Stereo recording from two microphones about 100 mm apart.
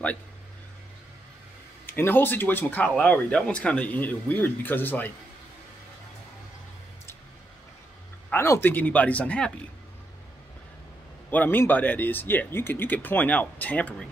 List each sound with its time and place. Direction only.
1.9 s speech: 20° left (ahead or behind)
8.3 s speech: 25° left (ahead or behind)
11.2 s speech: 20° left (ahead or behind)